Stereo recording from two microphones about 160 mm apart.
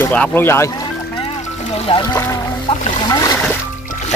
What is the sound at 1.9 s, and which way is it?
Speech, 35° left (ahead or behind).